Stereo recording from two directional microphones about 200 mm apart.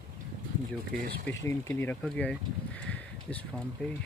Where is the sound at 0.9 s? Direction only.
45° right (ahead or behind).